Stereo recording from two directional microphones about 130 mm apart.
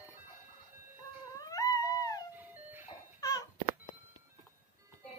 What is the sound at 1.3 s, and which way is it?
Dog, 30° left (ahead or behind).